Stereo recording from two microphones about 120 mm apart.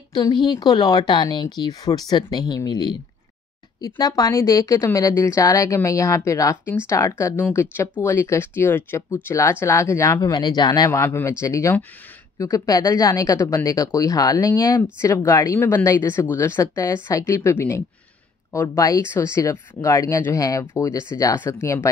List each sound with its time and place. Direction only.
0.1 s speech: 40° left (ahead or behind)
4.0 s speech: 30° left (ahead or behind)